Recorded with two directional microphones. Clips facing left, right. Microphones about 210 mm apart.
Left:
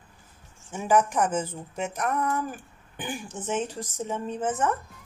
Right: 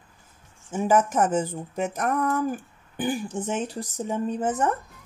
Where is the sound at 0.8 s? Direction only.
40° right (ahead or behind).